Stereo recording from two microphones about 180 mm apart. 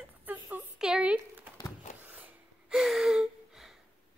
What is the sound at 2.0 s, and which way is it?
Gasp, 5° right (ahead or behind).